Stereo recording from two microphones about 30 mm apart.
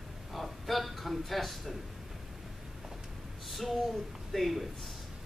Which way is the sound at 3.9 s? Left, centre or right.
Centre.